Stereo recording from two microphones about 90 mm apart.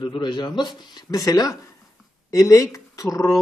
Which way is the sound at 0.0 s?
60° left (ahead or behind).